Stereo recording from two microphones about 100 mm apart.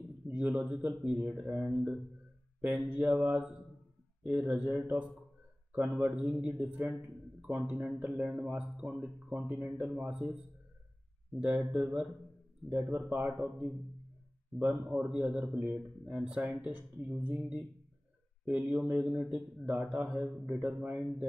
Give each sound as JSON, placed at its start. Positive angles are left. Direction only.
{"t": 0.3, "sound": "a man's voice", "side_deg": -15}